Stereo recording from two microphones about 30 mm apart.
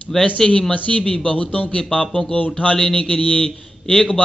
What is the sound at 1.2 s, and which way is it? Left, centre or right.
A man's voice, left.